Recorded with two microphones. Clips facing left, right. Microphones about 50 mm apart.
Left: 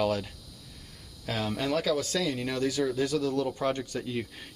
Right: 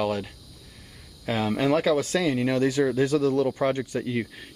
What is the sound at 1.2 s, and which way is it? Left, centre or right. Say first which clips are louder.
Speech: right 6 dB; right.